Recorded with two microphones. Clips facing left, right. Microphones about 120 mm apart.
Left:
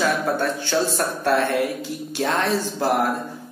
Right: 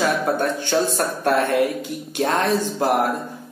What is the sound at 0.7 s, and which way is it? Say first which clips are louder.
Speech: right 2 dB; 35° right (ahead or behind).